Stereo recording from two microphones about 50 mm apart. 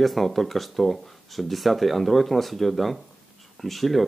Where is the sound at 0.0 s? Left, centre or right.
Centre.